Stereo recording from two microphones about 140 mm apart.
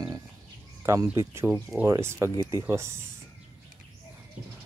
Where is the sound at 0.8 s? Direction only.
20° right (ahead or behind).